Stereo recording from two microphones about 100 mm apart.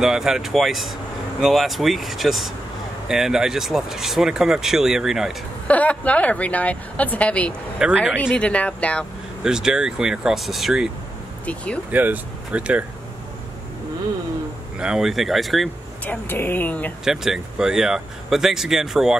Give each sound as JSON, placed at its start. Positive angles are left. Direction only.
{"t": 0.0, "sound": "speech", "side_deg": -5}
{"t": 5.7, "sound": "a woman's voice", "side_deg": 15}
{"t": 7.8, "sound": "speech", "side_deg": -10}
{"t": 8.2, "sound": "a woman's voice", "side_deg": 15}
{"t": 9.4, "sound": "speech", "side_deg": -5}
{"t": 11.4, "sound": "a woman's voice", "side_deg": 10}
{"t": 11.9, "sound": "speech", "side_deg": -15}
{"t": 14.8, "sound": "speech", "side_deg": -5}
{"t": 16.1, "sound": "speech", "side_deg": 20}
{"t": 17.0, "sound": "speech", "side_deg": -5}